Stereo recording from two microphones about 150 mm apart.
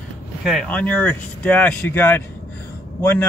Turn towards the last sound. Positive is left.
turn(degrees=10)  # may be behind; listen again after turning